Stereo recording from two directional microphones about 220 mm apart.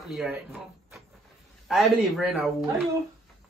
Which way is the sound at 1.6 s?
Centre (ahead or behind).